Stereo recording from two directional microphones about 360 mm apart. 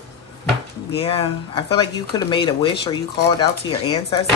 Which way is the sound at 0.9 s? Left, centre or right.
Centre.